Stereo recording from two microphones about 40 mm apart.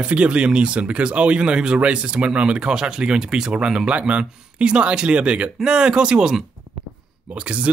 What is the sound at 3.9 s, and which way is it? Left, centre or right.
Speech, right.